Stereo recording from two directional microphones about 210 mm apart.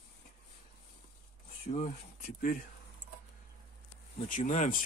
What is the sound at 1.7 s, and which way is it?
Speech, 30° left (ahead or behind).